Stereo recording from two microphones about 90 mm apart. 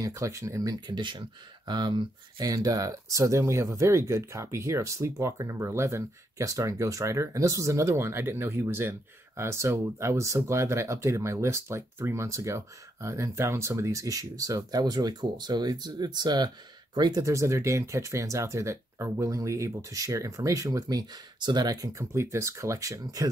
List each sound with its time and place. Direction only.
0.0 s speech: 35° right (ahead or behind)
0.7 s speech: 55° right (ahead or behind)
17.2 s speech: 35° right (ahead or behind)
21.4 s speech: 55° right (ahead or behind); by 23.2 s 40° right (ahead or behind)